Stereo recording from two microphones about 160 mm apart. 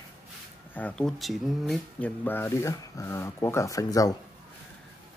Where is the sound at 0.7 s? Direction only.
5° left (ahead or behind).